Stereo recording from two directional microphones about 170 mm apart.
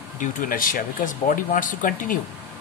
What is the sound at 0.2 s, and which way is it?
Speech, 55° left (ahead or behind).